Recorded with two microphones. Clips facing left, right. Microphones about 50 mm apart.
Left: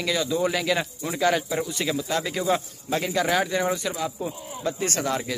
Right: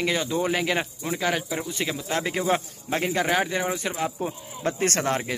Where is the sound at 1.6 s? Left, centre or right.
Right.